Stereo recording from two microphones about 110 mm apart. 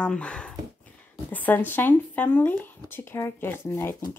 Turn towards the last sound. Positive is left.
turn(degrees=20)  # may be behind; listen again after turning